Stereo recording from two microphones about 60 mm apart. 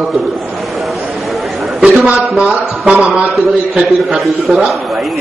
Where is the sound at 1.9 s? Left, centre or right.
Right.